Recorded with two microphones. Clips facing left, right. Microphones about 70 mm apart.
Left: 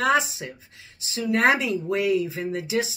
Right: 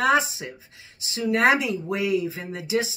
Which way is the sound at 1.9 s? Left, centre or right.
Left.